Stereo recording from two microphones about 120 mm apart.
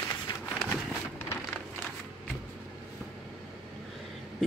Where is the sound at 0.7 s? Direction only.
20° left (ahead or behind).